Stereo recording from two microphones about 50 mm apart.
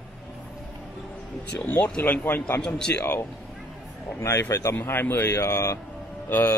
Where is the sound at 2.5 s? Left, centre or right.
Centre.